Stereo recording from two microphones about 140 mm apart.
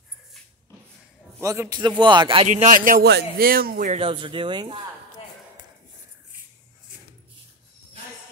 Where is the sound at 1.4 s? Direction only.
25° right (ahead or behind).